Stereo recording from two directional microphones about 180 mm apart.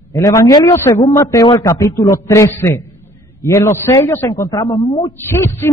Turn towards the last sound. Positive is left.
turn(degrees=15)  # may be behind; listen again after turning